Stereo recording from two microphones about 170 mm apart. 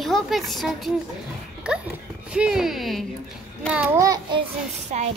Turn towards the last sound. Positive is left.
turn(degrees=-45)  # may be behind; listen again after turning